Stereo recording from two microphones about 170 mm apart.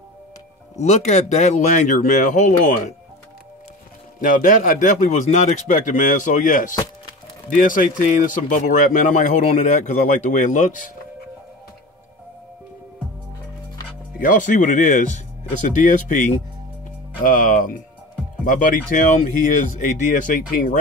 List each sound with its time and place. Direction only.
0.7 s speech: 40° left (ahead or behind)
4.2 s speech: 50° left (ahead or behind)
14.2 s speech: 50° left (ahead or behind)
17.2 s speech: 50° left (ahead or behind)